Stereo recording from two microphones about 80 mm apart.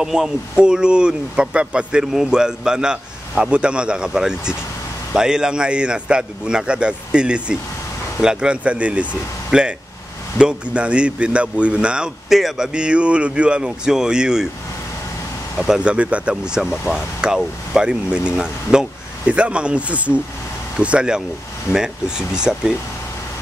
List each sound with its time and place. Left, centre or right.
0.0 s speech: centre
15.6 s speech: centre